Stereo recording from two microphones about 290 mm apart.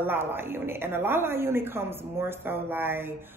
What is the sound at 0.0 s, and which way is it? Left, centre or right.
Speech, centre.